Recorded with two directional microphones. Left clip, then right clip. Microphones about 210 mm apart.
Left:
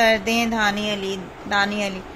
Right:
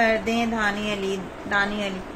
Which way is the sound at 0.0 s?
15° left (ahead or behind).